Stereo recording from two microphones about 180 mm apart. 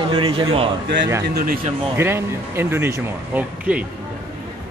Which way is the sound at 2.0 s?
15° right (ahead or behind).